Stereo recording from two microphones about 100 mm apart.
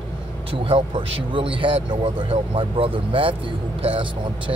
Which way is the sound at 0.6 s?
65° right (ahead or behind).